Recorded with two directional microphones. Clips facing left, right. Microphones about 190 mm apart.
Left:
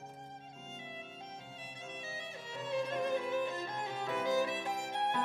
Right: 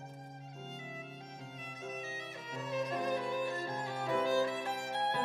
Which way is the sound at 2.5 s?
30° left (ahead or behind).